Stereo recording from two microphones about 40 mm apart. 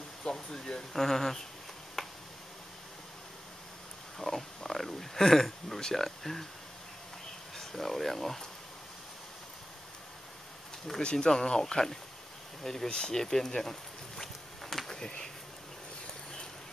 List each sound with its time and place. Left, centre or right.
0.2 s speech: centre
2.0 s tick-tock: centre
4.2 s speech: centre
7.5 s speech: centre
11.0 s speech: left
12.6 s bee: centre